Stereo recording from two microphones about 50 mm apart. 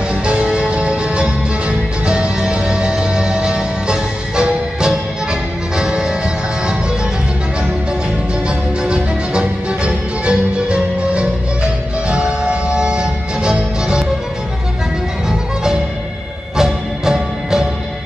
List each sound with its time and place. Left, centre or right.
0.1 s music: right
8.5 s music: centre
16.5 s music: centre